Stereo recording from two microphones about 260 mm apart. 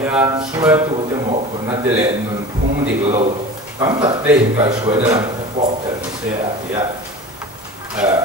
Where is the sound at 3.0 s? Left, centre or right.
Right.